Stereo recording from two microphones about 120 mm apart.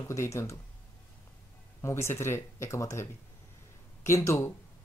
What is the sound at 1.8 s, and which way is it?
Speech, 20° left (ahead or behind).